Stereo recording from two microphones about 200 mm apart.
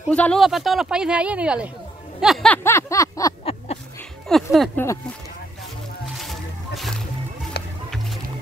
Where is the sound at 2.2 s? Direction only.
Centre (ahead or behind).